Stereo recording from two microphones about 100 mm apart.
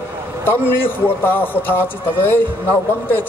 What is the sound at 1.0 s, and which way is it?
Speech, 20° left (ahead or behind).